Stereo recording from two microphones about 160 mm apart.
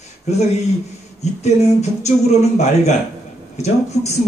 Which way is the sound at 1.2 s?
45° left (ahead or behind).